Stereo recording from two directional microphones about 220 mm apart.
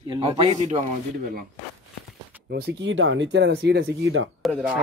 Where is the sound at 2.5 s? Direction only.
50° right (ahead or behind).